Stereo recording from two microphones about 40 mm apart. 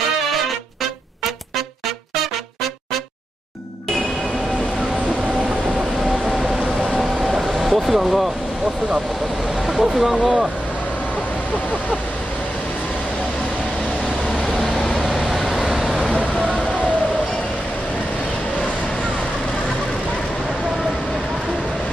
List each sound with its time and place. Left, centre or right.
5.8 s vehicle: centre
6.3 s a sound: centre
6.6 s vehicle: centre
7.0 s vehicle: centre
9.7 s speech: centre
14.4 s vehicle: centre
16.4 s a sound: left